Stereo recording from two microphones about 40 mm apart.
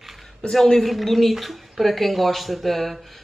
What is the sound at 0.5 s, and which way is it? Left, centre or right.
Speech, centre.